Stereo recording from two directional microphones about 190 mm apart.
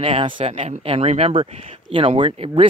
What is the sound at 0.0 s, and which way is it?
Speech, 25° right (ahead or behind).